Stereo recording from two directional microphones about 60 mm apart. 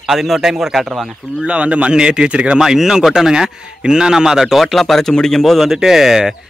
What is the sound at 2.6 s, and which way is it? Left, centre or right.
A man's voice, centre.